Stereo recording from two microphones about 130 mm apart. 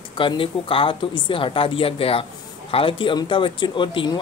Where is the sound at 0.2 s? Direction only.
45° left (ahead or behind).